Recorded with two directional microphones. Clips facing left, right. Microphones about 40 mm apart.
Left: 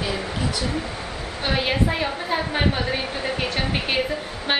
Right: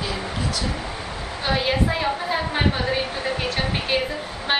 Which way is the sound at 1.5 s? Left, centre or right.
Centre.